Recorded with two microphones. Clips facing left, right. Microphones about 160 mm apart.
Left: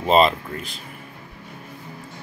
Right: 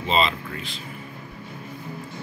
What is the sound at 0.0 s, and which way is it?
Speech, 50° left (ahead or behind).